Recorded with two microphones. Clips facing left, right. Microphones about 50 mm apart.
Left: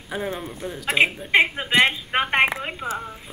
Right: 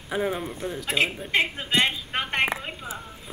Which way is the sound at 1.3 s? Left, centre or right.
Left.